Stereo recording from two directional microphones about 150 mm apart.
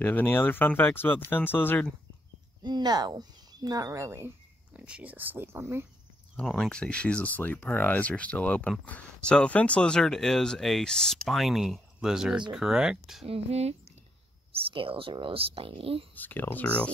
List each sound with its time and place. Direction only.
0.0 s speech: 15° left (ahead or behind)
2.6 s speech: 30° right (ahead or behind)
4.7 s speech: 5° right (ahead or behind)
6.5 s speech: 5° left (ahead or behind)
13.3 s speech: 45° right (ahead or behind)
16.2 s speech: 10° left (ahead or behind)